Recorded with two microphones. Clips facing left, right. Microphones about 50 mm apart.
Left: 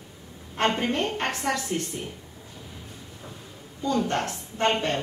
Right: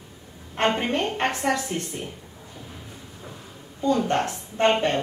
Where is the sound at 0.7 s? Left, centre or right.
Centre.